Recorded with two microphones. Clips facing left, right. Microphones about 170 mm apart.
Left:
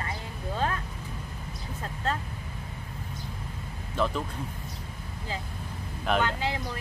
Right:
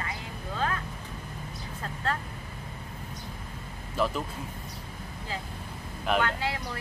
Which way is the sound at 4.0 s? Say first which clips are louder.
Even; 5° right (ahead or behind).